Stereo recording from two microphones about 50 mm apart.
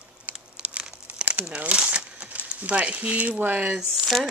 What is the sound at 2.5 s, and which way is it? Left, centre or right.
Speech, right.